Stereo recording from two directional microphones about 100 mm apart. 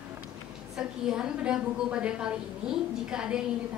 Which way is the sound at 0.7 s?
5° right (ahead or behind).